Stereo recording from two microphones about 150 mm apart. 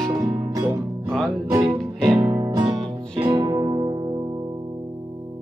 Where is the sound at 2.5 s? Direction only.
30° right (ahead or behind).